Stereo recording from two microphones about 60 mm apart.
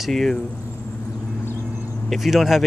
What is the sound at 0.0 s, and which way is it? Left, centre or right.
Speech, centre.